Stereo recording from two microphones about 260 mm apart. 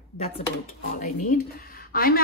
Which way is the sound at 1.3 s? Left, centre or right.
Left.